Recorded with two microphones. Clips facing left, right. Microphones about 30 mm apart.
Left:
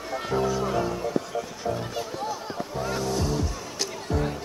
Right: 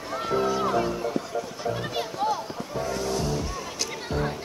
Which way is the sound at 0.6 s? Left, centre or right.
Centre.